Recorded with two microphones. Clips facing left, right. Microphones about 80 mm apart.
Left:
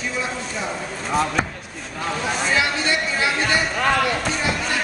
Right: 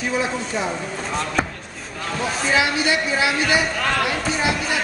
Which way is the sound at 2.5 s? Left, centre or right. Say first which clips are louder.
Right 3 dB; centre.